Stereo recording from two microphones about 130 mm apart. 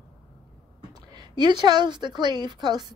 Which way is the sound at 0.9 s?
35° right (ahead or behind).